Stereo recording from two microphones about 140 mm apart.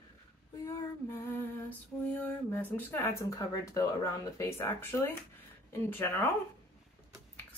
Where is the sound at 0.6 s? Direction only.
15° left (ahead or behind).